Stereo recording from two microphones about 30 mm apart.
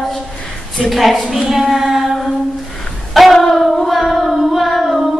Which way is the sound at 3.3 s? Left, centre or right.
Centre.